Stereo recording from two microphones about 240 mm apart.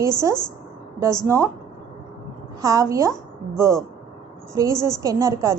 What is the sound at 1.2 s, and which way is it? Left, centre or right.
Speech, centre.